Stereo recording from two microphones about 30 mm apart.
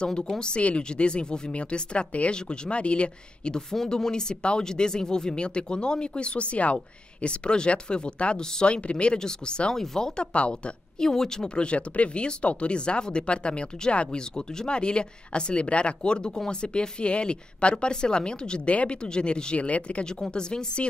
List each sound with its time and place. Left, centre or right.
0.0 s speech: left
0.6 s speech: left
2.3 s speech: left
3.9 s speech: left
5.3 s speech: left
7.4 s speech: left
9.2 s speech: left
11.5 s speech: left
18.7 s speech: left
19.0 s speech: left
19.5 s speech: left
20.1 s speech: left